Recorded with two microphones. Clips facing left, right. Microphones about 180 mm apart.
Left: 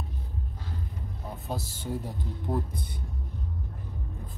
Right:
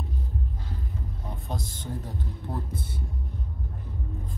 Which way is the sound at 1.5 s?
5° left (ahead or behind).